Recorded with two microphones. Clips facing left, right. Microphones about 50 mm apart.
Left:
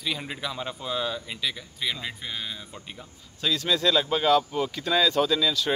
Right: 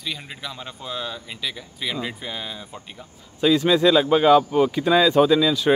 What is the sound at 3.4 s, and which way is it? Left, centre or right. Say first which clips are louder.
Speech: right 8 dB; centre.